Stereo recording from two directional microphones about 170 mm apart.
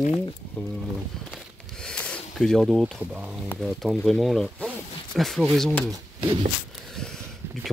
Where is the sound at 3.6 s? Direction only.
Centre (ahead or behind).